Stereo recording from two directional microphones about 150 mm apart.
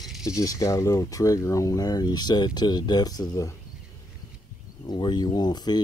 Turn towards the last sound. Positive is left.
turn(degrees=30)  # may be behind; listen again after turning